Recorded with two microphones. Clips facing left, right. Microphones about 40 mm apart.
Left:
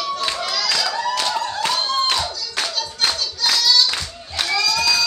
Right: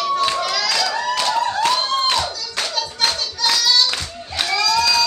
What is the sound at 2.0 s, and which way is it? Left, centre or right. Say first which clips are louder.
Hands: right 2 dB; centre.